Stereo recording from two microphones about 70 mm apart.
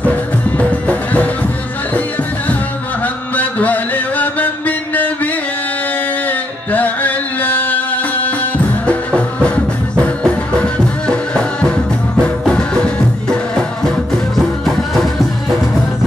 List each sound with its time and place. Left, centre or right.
0.0 s music: left
3.3 s mantra: left
6.2 s music: left